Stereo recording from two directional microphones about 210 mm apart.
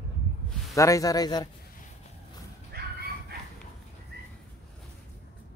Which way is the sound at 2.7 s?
50° right (ahead or behind).